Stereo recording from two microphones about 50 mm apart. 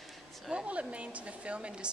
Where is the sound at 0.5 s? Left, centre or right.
Right.